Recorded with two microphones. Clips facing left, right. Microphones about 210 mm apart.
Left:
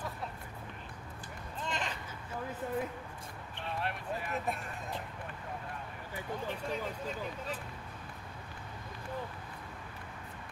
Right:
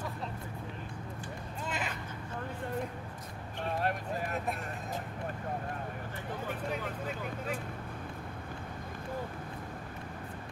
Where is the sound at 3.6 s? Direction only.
45° right (ahead or behind).